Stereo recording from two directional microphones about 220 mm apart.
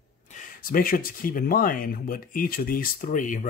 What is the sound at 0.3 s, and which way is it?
Speech, 40° left (ahead or behind).